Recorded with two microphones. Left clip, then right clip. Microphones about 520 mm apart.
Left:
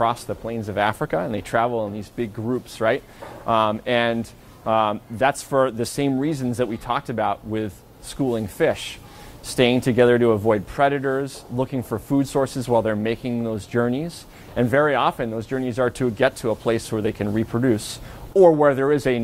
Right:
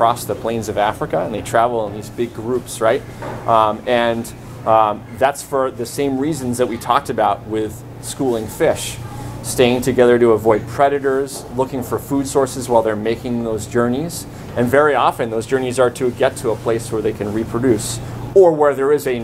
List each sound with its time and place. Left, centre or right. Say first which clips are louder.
0.0 s speech: right 6 dB; left